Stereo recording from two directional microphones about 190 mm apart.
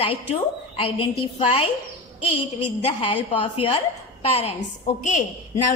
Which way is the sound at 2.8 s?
30° left (ahead or behind).